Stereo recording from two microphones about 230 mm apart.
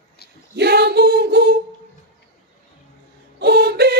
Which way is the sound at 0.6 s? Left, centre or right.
Right.